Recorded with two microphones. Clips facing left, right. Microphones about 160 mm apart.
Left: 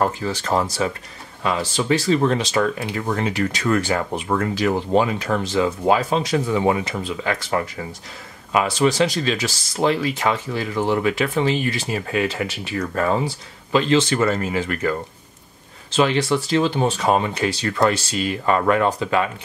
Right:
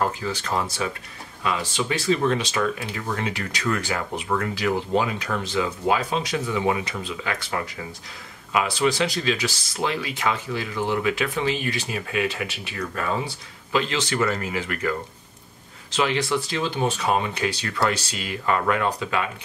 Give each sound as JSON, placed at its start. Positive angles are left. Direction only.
{"t": 0.2, "sound": "speech", "side_deg": 40}
{"t": 8.5, "sound": "speech", "side_deg": 40}
{"t": 16.0, "sound": "speech", "side_deg": 35}